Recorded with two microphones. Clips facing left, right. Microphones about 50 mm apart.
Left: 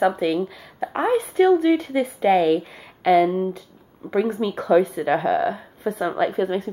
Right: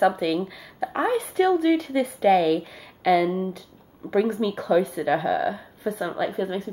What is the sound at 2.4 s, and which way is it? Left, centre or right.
Speech, left.